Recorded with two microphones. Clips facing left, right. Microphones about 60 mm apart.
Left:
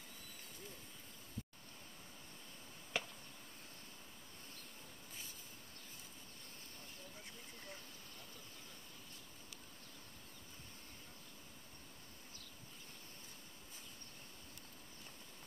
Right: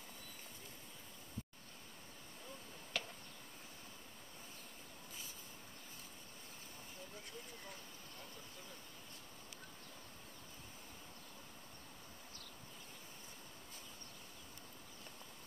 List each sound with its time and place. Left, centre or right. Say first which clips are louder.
2.9 s chop: left 2 dB; centre